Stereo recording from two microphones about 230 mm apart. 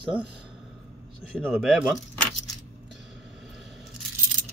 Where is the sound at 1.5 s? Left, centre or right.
Centre.